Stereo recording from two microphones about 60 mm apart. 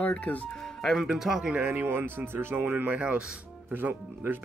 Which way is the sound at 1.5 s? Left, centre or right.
Right.